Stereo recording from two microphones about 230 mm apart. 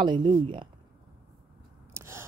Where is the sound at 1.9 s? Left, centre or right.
Centre.